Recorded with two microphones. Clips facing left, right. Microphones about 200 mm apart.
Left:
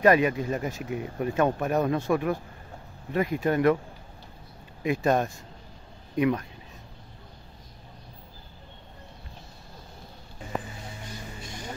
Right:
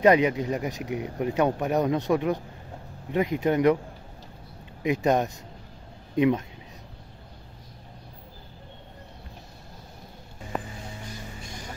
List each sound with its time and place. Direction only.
0.0 s speech: 20° right (ahead or behind)
4.8 s speech: 20° right (ahead or behind)